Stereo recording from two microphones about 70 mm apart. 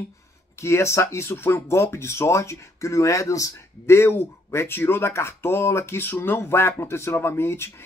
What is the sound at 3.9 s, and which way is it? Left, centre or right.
Speech, left.